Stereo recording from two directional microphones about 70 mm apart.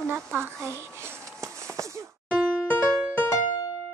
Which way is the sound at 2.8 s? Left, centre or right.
Left.